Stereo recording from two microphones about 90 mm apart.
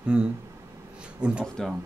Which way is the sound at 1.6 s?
5° left (ahead or behind).